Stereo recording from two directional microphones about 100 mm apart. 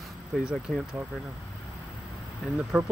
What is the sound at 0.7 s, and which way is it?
Speech, 5° left (ahead or behind).